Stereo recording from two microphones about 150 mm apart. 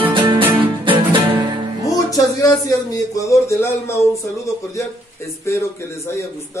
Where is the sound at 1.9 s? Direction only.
25° left (ahead or behind).